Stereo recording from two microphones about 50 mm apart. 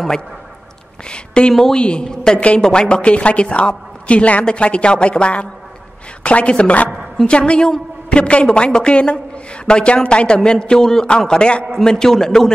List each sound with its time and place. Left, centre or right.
1.0 s speech: centre
1.5 s a man's voice: centre
1.8 s a woman's voice: centre